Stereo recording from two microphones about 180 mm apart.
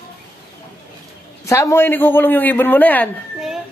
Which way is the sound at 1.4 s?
15° left (ahead or behind).